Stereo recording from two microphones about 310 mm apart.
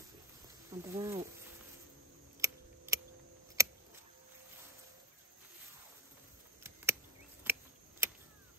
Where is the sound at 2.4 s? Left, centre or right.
Centre.